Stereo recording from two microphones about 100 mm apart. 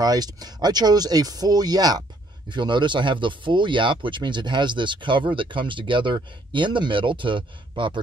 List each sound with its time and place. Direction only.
0.0 s speech: 40° right (ahead or behind)
2.5 s speech: 50° right (ahead or behind)